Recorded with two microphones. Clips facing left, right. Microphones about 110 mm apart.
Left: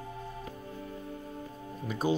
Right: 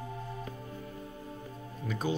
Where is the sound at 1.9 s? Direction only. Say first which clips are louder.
Left 3 dB; 15° left (ahead or behind).